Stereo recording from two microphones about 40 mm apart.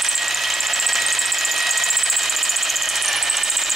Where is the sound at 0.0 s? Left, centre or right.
Centre.